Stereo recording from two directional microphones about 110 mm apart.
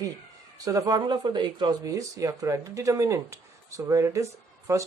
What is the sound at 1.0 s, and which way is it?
Speech, 45° right (ahead or behind).